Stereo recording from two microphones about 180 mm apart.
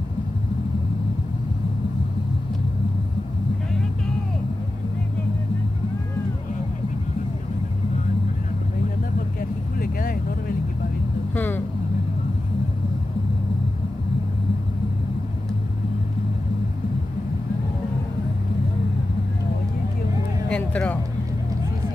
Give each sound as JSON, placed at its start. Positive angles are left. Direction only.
{"t": 9.8, "sound": "vehicle", "side_deg": 50}
{"t": 11.3, "sound": "vehicle", "side_deg": 10}
{"t": 20.4, "sound": "music", "side_deg": 5}